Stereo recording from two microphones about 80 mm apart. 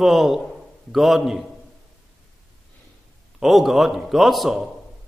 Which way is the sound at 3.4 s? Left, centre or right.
Centre.